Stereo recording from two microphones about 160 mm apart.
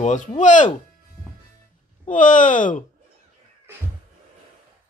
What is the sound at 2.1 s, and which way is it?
Speech, 55° left (ahead or behind).